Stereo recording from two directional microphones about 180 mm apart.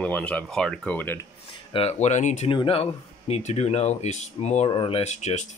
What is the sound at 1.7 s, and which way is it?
Speech, 35° left (ahead or behind).